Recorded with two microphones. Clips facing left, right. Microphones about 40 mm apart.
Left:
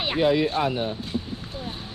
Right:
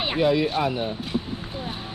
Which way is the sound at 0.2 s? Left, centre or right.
Centre.